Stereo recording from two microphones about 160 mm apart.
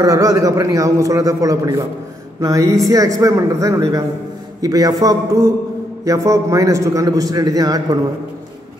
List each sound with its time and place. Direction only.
0.0 s a man's voice: 20° right (ahead or behind)